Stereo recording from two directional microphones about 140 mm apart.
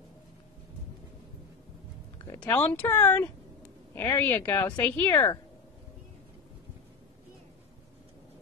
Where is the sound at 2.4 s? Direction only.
10° left (ahead or behind).